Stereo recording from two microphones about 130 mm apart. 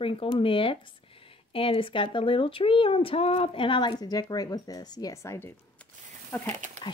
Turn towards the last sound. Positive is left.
turn(degrees=15)  # may be behind; listen again after turning